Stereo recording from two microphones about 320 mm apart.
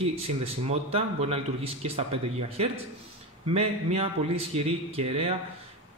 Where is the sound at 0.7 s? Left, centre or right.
Centre.